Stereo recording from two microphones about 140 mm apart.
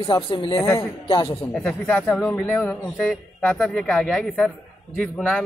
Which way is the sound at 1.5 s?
5° left (ahead or behind).